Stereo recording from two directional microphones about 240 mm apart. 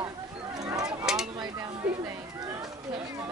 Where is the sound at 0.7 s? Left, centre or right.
Centre.